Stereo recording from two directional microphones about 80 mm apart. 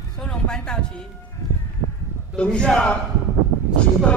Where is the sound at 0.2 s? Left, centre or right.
Centre.